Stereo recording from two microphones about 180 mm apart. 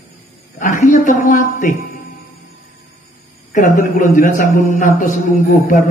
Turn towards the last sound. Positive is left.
turn(degrees=45)  # may be behind; listen again after turning